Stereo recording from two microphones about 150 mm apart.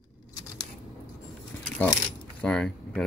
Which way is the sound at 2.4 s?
5° left (ahead or behind).